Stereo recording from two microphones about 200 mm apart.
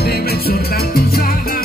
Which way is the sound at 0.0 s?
50° left (ahead or behind).